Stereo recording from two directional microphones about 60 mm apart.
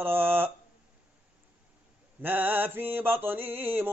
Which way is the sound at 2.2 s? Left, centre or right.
Right.